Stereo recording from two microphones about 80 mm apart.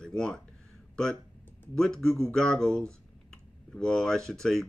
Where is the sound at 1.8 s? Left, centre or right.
Centre.